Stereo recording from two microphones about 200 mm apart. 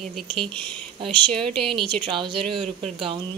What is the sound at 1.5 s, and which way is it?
Speech, 25° right (ahead or behind).